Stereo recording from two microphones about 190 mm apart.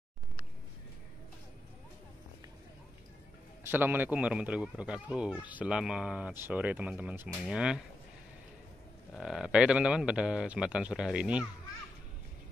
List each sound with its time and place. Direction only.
3.6 s speech: 10° right (ahead or behind)
9.1 s a man's voice: centre (ahead or behind)